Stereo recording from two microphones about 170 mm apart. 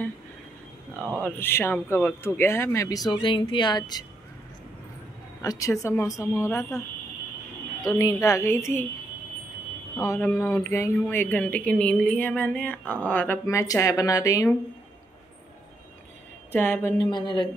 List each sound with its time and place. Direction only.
1.2 s speech: 10° left (ahead or behind)
5.4 s speech: 20° left (ahead or behind)
7.8 s speech: 20° left (ahead or behind)
9.9 s speech: 15° left (ahead or behind)
16.5 s a woman's voice: 10° left (ahead or behind)